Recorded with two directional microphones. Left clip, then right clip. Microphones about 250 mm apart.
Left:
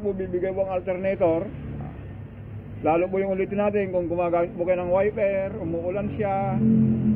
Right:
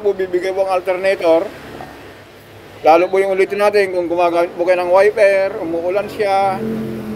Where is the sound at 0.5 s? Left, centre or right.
Centre.